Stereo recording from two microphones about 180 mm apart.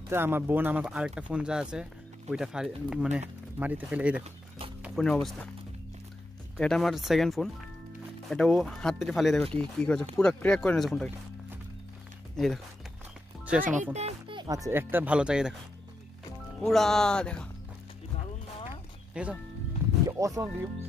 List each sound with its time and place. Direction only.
0.1 s speech: 10° right (ahead or behind)
6.5 s speech: centre (ahead or behind)
13.5 s speech: 5° right (ahead or behind)
13.9 s speech: 30° right (ahead or behind); by 15.5 s 5° right (ahead or behind)
16.6 s speech: centre (ahead or behind)
19.2 s speech: 5° right (ahead or behind)
20.1 s speech: 20° right (ahead or behind)